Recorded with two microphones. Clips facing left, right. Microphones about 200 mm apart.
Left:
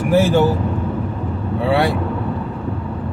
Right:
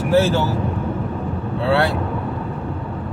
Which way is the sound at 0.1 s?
15° left (ahead or behind).